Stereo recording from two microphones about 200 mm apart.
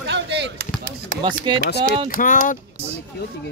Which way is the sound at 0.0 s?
60° right (ahead or behind).